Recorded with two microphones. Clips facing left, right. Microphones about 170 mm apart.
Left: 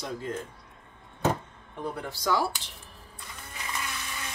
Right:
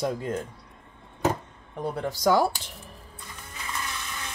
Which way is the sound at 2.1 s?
45° right (ahead or behind).